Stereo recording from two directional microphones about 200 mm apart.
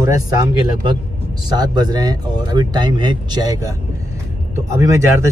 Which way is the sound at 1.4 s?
20° right (ahead or behind).